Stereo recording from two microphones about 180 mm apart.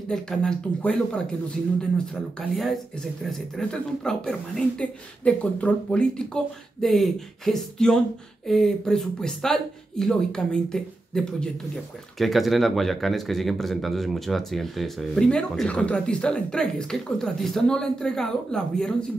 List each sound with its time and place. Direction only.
0.1 s speech: 5° left (ahead or behind)
3.3 s speech: 5° left (ahead or behind)